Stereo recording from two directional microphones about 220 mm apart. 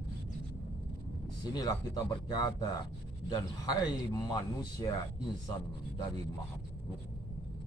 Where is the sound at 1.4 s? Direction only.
20° left (ahead or behind).